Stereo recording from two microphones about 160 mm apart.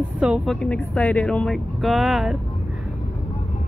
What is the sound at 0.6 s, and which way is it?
Speech, 5° left (ahead or behind).